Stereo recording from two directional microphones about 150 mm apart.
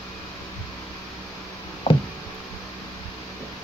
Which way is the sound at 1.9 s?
45° left (ahead or behind).